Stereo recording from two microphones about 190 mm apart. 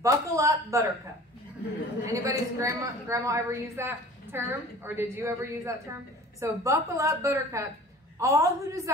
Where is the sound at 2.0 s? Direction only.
15° right (ahead or behind).